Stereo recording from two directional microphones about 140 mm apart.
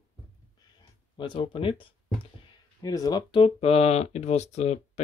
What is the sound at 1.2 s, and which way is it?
Speech, 35° left (ahead or behind).